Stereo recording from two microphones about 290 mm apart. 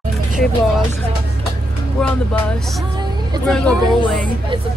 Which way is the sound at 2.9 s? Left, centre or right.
Centre.